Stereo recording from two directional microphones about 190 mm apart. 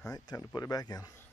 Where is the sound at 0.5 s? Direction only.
20° left (ahead or behind).